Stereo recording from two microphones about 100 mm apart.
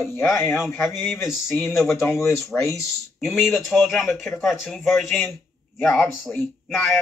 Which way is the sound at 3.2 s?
Centre (ahead or behind).